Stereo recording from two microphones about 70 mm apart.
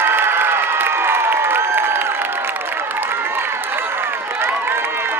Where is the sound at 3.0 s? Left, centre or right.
Right.